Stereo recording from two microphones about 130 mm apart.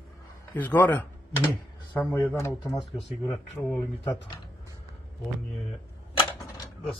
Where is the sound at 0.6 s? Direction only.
15° left (ahead or behind).